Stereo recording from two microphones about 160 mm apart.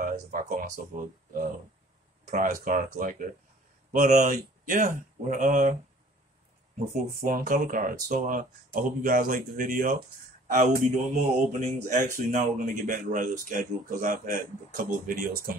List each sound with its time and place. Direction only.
0.0 s speech: 55° right (ahead or behind)
6.9 s speech: 60° right (ahead or behind)
10.5 s speech: 50° right (ahead or behind); by 15.5 s 65° right (ahead or behind)